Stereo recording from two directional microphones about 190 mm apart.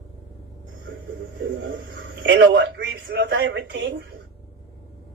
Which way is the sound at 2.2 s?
65° right (ahead or behind).